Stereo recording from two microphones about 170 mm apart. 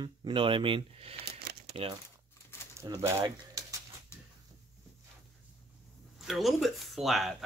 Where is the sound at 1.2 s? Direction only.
65° right (ahead or behind).